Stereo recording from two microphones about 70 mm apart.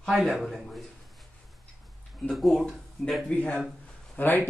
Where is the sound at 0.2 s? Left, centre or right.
Centre.